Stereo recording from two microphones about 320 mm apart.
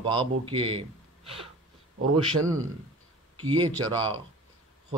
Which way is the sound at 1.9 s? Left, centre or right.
Right.